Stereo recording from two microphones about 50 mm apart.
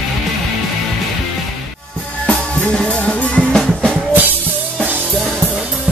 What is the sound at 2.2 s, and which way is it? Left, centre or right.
Music, centre.